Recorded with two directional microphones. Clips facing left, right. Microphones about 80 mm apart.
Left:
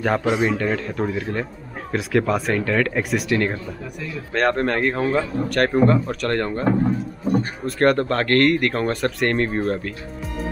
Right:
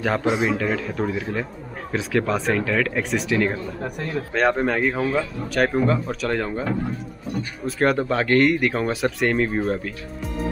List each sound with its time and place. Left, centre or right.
0.0 s a man's voice: centre
3.8 s speech: right
4.3 s a man's voice: centre
6.8 s a sound: left
7.6 s a man's voice: centre